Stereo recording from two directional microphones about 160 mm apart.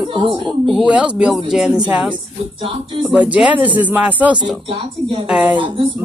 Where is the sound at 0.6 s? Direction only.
5° right (ahead or behind).